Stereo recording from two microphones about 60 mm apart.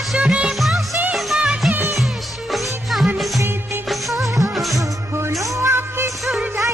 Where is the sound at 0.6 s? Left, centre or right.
Centre.